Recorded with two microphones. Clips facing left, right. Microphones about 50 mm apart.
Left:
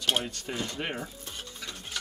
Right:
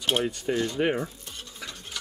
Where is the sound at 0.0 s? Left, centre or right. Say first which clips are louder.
Right 4 dB; centre.